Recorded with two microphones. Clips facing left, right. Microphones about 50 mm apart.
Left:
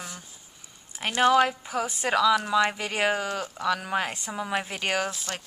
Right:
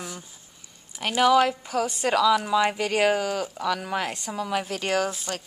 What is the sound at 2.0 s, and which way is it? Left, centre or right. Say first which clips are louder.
A woman's voice: right 1 dB; centre.